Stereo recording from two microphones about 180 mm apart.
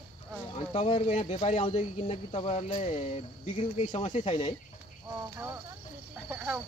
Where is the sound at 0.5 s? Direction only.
35° left (ahead or behind).